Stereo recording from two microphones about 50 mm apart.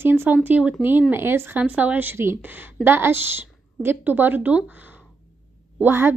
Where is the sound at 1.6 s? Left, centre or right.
Right.